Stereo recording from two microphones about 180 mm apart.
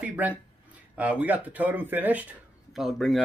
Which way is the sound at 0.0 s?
10° right (ahead or behind).